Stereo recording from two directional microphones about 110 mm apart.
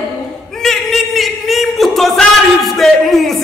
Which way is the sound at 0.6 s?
5° left (ahead or behind).